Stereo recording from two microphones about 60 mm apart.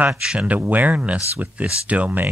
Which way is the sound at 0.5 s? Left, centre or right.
Right.